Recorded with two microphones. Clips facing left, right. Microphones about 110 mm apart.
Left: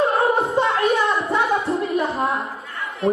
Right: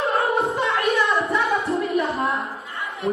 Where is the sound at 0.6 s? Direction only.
30° left (ahead or behind).